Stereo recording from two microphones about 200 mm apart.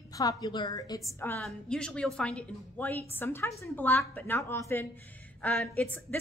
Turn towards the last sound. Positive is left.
turn(degrees=10)  # may be behind; listen again after turning